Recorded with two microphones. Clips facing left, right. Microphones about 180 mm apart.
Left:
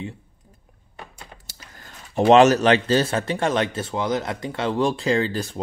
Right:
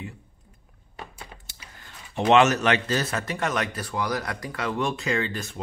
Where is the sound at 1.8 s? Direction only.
40° left (ahead or behind).